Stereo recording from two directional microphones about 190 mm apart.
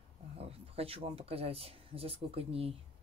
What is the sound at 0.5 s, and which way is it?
Speech, 30° right (ahead or behind).